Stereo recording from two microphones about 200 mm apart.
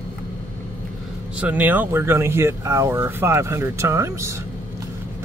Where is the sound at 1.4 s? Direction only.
10° right (ahead or behind).